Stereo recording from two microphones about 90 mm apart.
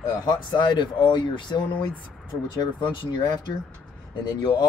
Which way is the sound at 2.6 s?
55° left (ahead or behind).